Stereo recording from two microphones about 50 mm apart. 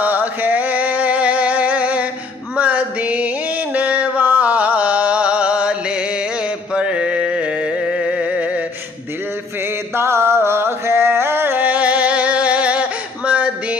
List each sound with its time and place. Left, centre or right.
0.0 s music: right
2.5 s a sound: right
4.3 s music: right
9.9 s music: right
11.5 s music: right